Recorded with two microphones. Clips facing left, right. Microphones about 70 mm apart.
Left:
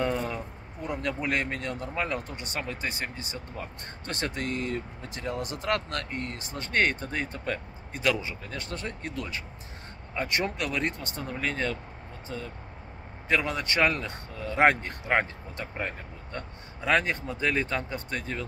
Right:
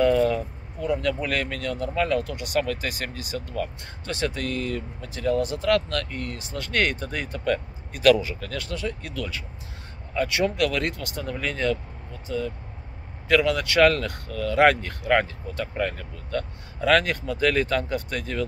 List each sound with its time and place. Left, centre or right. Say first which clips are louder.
1.0 s speech: right 3 dB; left